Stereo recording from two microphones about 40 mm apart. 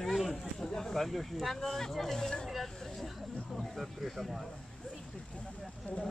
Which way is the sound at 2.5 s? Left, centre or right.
Centre.